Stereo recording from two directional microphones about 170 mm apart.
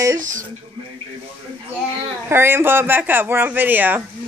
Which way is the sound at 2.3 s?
15° right (ahead or behind).